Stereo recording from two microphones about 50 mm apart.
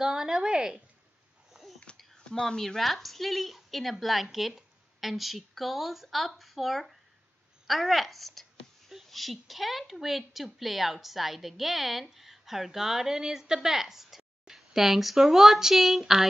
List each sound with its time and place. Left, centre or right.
0.0 s speech: centre
1.5 s a sound: centre
2.4 s a woman's voice: centre